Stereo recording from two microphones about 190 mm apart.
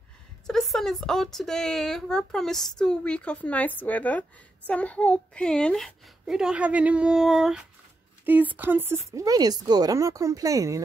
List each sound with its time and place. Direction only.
0.5 s speech: centre (ahead or behind); by 10.8 s 15° right (ahead or behind)